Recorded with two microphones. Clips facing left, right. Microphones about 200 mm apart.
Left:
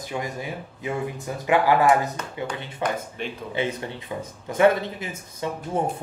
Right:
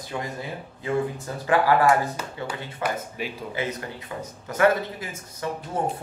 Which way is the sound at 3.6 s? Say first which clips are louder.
Left 4 dB; 25° left (ahead or behind).